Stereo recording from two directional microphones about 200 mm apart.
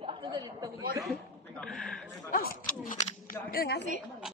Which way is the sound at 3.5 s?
50° left (ahead or behind).